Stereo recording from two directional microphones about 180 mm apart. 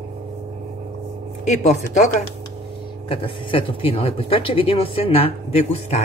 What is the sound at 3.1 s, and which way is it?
Speech, 30° left (ahead or behind).